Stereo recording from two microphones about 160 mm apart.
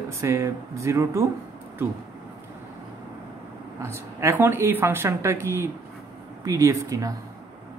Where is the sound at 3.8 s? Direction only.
15° right (ahead or behind).